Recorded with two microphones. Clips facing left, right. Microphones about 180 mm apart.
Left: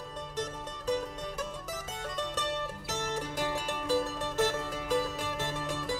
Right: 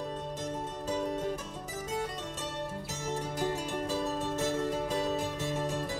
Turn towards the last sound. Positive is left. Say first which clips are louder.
# even
turn(degrees=90)